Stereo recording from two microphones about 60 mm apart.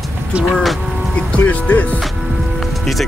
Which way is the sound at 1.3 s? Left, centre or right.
Left.